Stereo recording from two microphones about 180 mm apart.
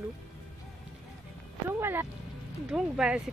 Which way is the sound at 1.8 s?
15° right (ahead or behind).